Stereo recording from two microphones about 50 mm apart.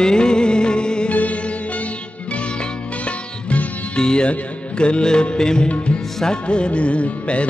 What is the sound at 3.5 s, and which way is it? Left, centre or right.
Music, left.